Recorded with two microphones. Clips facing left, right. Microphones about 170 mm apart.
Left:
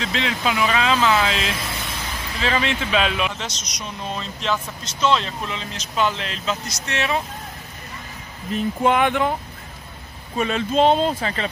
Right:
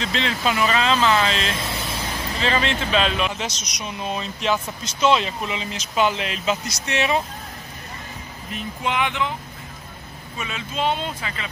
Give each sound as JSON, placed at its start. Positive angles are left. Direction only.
{"t": 0.0, "sound": "speech", "side_deg": 5}
{"t": 3.3, "sound": "speech", "side_deg": -10}
{"t": 8.8, "sound": "speech", "side_deg": 50}
{"t": 10.3, "sound": "speech", "side_deg": 40}